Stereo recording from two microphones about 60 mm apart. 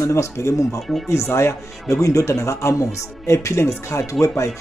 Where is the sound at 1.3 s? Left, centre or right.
Left.